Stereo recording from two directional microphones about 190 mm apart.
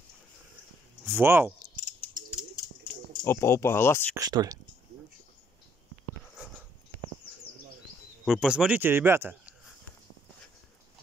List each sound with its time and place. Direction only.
1.0 s speech: 10° right (ahead or behind)
1.8 s a sound: 40° right (ahead or behind)
3.3 s speech: 15° left (ahead or behind)
4.1 s speech: 20° right (ahead or behind)
8.3 s speech: 5° right (ahead or behind)